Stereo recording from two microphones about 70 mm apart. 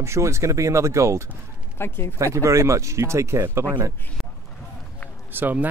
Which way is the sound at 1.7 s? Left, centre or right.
Left.